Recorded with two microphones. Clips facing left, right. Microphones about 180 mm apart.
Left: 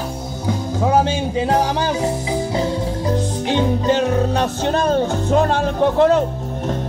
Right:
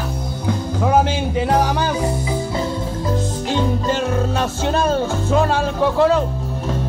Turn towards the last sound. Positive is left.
turn(degrees=20)  # may be behind; listen again after turning